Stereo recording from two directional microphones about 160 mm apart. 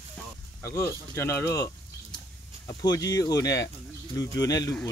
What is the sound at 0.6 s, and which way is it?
Speech, 15° left (ahead or behind).